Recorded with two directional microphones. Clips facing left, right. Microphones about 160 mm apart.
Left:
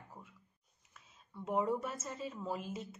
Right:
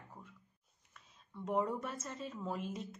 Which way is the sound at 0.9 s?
5° left (ahead or behind).